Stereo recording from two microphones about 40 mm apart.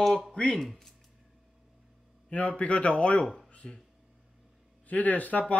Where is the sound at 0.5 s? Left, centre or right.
Centre.